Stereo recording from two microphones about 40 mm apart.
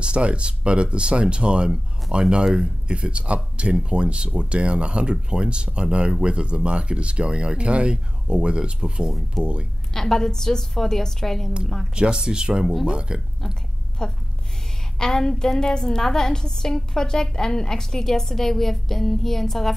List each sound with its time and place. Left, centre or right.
0.0 s speech: right
9.9 s a woman's voice: centre
11.9 s speech: right
14.0 s a woman's voice: left